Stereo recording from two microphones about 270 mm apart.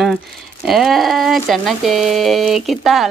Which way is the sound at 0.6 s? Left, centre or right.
Centre.